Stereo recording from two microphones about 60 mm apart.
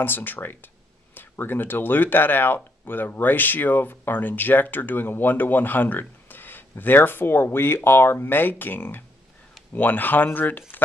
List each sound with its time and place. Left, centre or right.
0.0 s speech: left